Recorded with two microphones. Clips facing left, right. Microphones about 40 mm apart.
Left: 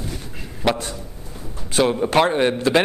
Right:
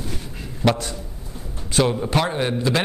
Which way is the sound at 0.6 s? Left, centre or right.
Centre.